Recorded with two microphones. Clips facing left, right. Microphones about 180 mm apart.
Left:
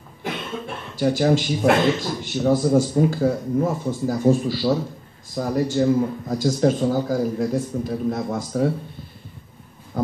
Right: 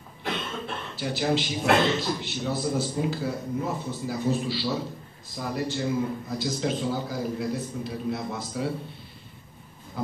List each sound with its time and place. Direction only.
0.9 s a man's voice: 45° left (ahead or behind)